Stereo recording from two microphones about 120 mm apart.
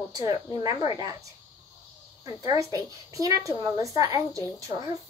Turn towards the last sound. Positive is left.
turn(degrees=-30)  # may be behind; listen again after turning